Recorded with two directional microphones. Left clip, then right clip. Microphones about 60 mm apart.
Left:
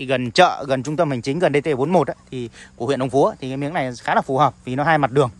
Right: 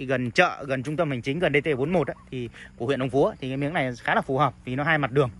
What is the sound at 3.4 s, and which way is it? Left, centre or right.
Speech, left.